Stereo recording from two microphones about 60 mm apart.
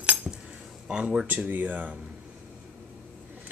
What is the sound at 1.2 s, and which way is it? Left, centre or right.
Speech, right.